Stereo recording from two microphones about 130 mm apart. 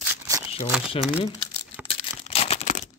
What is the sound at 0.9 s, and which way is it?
Speech, 45° left (ahead or behind).